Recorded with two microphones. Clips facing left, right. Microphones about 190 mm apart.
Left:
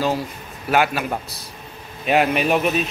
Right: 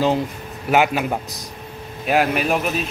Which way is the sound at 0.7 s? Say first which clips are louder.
Right 2 dB; 15° right (ahead or behind).